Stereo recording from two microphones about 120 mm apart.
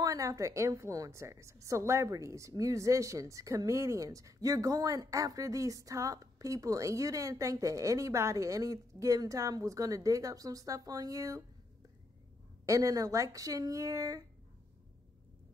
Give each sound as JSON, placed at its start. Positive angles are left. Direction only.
{"t": 0.0, "sound": "a woman's voice", "side_deg": -30}
{"t": 12.6, "sound": "a woman's voice", "side_deg": -30}